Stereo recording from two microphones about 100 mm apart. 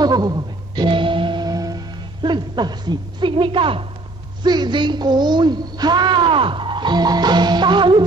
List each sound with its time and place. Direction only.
0.0 s music: 45° right (ahead or behind)
2.2 s a woman's voice: 50° right (ahead or behind)
4.4 s speech: 50° right (ahead or behind)